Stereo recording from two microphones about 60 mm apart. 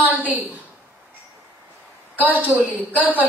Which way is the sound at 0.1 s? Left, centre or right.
Right.